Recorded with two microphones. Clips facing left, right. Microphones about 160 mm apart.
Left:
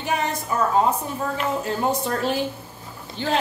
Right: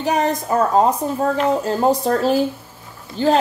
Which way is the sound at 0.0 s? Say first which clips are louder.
Right 6 dB; 40° right (ahead or behind).